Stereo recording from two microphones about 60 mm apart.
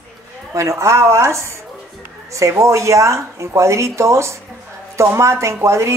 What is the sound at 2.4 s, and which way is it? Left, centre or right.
A woman's voice, right.